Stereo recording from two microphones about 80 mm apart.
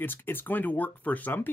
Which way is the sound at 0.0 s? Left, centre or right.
Left.